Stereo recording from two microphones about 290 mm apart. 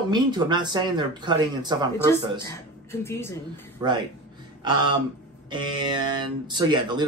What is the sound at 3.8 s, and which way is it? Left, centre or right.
Speech, centre.